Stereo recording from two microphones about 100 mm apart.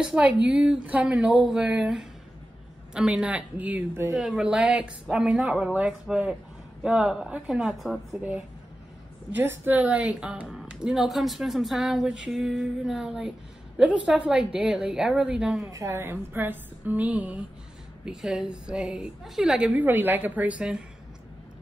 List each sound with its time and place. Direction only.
0.0 s a woman's voice: 10° right (ahead or behind)
4.1 s a woman's voice: 5° right (ahead or behind)
8.2 s a woman's voice: 15° right (ahead or behind)
15.7 s a woman's voice: 30° right (ahead or behind)
18.0 s a woman's voice: 5° right (ahead or behind)